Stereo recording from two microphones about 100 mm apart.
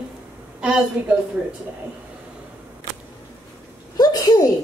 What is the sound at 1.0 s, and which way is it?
Speech, 15° right (ahead or behind).